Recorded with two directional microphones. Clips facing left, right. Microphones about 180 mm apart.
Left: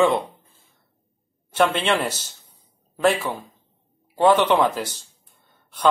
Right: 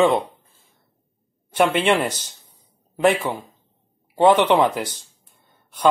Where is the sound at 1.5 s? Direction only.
10° right (ahead or behind).